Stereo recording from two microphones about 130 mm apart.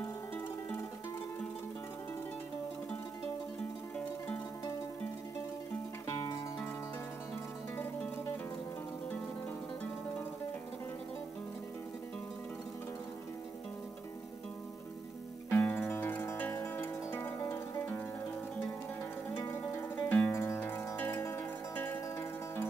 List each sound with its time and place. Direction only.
6.0 s music: 25° left (ahead or behind)
7.7 s music: 15° left (ahead or behind)
15.5 s zither: 15° left (ahead or behind)
19.3 s zither: 20° left (ahead or behind)